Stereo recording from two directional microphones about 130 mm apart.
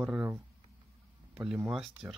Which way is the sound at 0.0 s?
10° right (ahead or behind).